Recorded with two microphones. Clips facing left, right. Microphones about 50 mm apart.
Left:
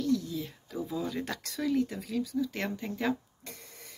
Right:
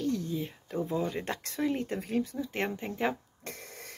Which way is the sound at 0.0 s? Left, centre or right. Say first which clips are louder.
Left 1 dB; right.